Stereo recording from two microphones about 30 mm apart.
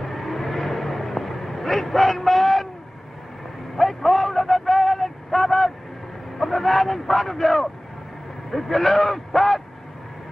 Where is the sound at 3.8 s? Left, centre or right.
Centre.